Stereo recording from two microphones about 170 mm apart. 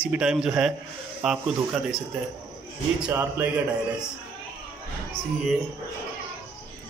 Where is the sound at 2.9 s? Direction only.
10° right (ahead or behind).